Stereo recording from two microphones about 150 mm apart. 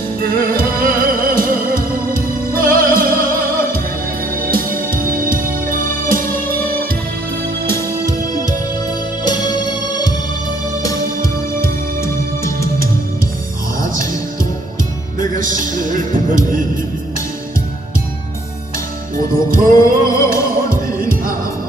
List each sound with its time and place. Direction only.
0.2 s music: 70° right (ahead or behind)
9.2 s music: 30° left (ahead or behind)
12.0 s music: 20° left (ahead or behind)
15.1 s music: 60° right (ahead or behind)
19.1 s music: 70° right (ahead or behind)
20.2 s music: 20° left (ahead or behind)
21.0 s music: 70° right (ahead or behind)